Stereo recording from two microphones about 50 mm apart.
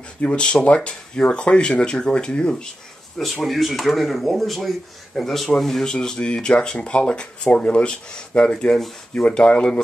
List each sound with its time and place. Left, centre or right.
0.2 s speech: left
3.4 s speech: centre; by 7.9 s left
8.4 s speech: centre
9.1 s speech: left